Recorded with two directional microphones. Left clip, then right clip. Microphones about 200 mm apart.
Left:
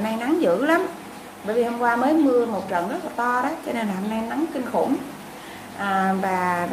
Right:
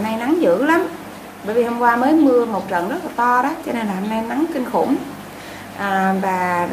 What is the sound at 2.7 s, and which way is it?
A woman's voice, 10° right (ahead or behind).